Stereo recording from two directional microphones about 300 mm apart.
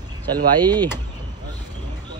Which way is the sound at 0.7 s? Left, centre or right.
Centre.